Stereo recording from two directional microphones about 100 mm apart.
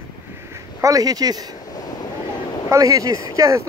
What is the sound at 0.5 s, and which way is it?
Speech, 35° right (ahead or behind).